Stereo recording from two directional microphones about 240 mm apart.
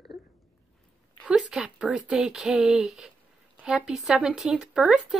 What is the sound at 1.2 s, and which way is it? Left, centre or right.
Speech, centre.